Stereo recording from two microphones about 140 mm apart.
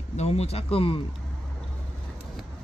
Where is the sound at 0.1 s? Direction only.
50° left (ahead or behind).